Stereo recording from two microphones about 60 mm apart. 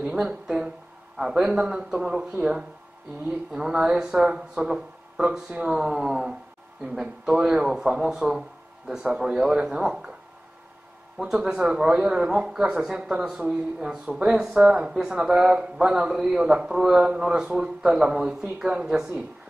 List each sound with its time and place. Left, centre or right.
0.0 s speech: centre
11.4 s speech: centre